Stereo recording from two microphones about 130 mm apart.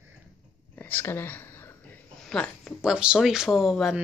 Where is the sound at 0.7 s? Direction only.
15° left (ahead or behind).